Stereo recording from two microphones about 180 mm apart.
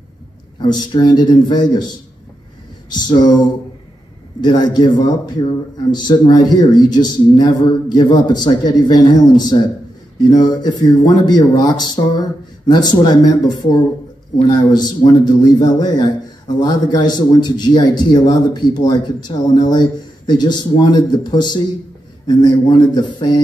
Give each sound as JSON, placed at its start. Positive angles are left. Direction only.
{"t": 0.6, "sound": "a man's voice", "side_deg": 25}